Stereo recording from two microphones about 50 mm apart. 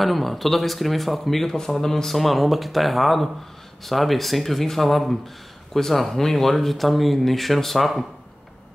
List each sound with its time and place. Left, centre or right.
0.0 s speech: centre